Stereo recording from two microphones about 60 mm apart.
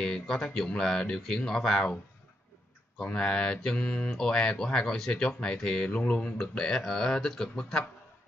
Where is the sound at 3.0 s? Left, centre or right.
Centre.